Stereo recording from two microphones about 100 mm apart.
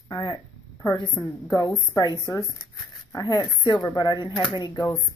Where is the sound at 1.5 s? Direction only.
35° left (ahead or behind).